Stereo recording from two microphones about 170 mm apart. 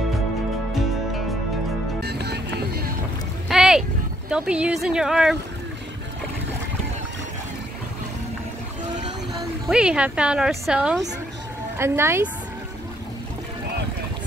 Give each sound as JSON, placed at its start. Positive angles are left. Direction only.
{"t": 2.0, "sound": "music", "side_deg": -70}
{"t": 3.4, "sound": "a sound", "side_deg": -5}
{"t": 4.3, "sound": "speech", "side_deg": -5}
{"t": 9.3, "sound": "speech", "side_deg": 0}